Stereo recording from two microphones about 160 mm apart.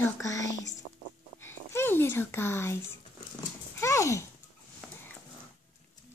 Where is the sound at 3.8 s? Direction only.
20° left (ahead or behind).